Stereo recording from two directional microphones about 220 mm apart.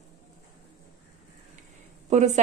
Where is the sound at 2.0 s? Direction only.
30° right (ahead or behind).